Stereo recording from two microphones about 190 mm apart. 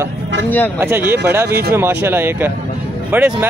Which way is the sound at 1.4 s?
55° right (ahead or behind).